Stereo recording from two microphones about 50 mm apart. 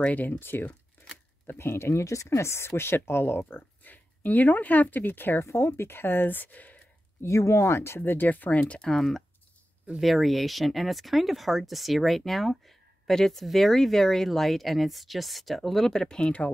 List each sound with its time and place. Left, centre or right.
0.0 s speech: left
1.6 s speech: left
5.4 s speech: left
7.2 s speech: left
8.0 s speech: left
8.8 s speech: centre